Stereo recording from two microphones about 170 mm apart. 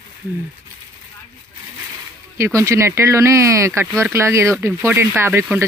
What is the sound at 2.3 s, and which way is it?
Speech, 15° right (ahead or behind).